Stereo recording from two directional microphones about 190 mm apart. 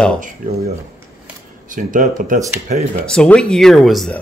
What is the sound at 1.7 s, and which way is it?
Speech, 45° right (ahead or behind).